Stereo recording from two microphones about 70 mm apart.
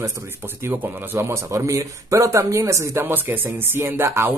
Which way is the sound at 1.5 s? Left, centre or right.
Right.